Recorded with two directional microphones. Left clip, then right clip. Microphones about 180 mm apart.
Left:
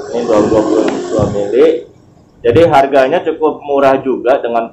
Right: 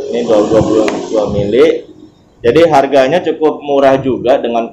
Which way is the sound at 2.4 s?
20° right (ahead or behind).